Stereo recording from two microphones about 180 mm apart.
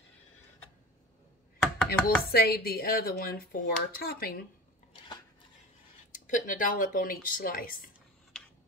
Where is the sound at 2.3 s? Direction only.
60° left (ahead or behind).